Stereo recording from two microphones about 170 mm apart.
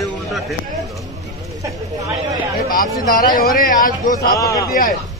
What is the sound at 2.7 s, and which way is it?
Speech, 55° left (ahead or behind).